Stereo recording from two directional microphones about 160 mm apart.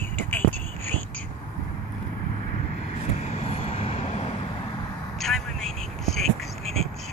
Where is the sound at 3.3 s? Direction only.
40° left (ahead or behind).